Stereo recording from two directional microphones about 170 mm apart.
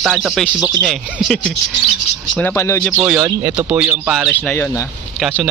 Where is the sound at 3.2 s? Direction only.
10° right (ahead or behind).